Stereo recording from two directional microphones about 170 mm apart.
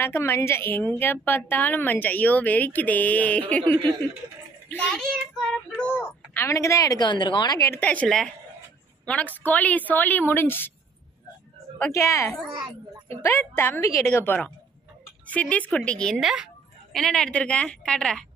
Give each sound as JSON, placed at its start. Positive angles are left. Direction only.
{"t": 0.0, "sound": "a woman's voice", "side_deg": 15}
{"t": 4.6, "sound": "a woman's voice", "side_deg": 5}
{"t": 11.8, "sound": "a woman's voice", "side_deg": 15}